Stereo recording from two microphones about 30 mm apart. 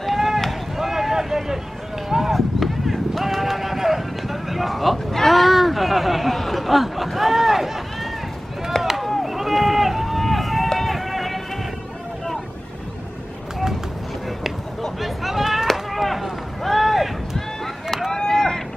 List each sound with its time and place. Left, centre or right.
0.0 s run: centre
0.7 s boat: centre
2.0 s run: centre
2.6 s clip-clop: centre
4.9 s a sound: centre
8.7 s chop: centre
9.2 s run: centre
15.0 s a sound: centre
15.6 s artillery fire: centre
18.1 s vehicle: centre